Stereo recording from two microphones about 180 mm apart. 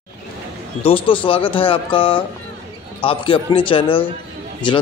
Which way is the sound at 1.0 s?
30° left (ahead or behind).